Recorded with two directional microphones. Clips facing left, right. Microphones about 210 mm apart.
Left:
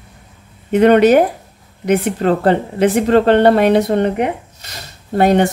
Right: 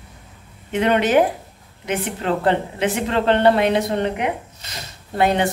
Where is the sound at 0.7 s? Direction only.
45° left (ahead or behind).